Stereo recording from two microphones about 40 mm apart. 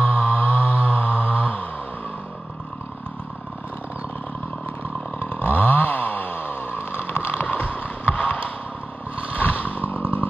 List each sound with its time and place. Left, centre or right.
0.0 s music: left
5.2 s chainsaw: left
7.4 s a sound: left
9.3 s chainsaw: left